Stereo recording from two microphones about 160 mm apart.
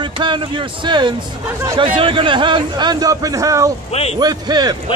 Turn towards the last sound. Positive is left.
turn(degrees=-25)  # may be behind; listen again after turning